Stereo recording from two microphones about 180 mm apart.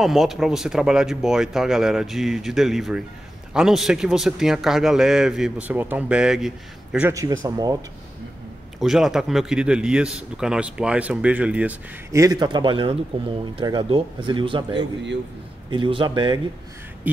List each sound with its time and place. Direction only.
0.0 s a man's voice: centre (ahead or behind); by 7.7 s 20° right (ahead or behind)
8.7 s a man's voice: centre (ahead or behind)
12.1 s speech: 20° right (ahead or behind)